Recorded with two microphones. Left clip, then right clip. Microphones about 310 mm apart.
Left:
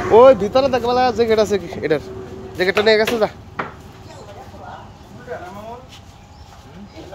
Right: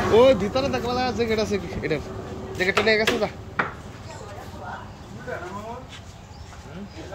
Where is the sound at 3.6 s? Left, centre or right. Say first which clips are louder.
Right 1 dB; left.